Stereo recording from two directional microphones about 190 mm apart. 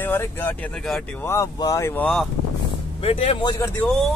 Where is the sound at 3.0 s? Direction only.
30° left (ahead or behind); by 3.9 s 15° left (ahead or behind).